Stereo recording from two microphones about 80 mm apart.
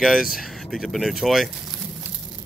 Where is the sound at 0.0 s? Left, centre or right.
Centre.